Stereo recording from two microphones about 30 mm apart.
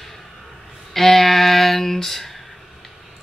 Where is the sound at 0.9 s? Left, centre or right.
Centre.